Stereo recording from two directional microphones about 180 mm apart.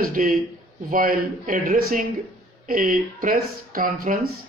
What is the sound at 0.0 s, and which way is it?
Speech, 50° right (ahead or behind).